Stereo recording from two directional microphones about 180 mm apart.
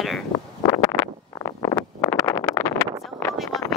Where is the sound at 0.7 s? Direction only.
15° left (ahead or behind).